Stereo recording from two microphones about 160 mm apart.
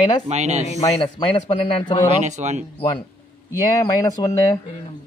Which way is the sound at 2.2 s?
45° right (ahead or behind).